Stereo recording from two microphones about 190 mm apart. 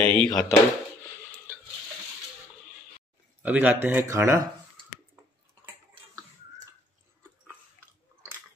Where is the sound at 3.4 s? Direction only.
10° right (ahead or behind).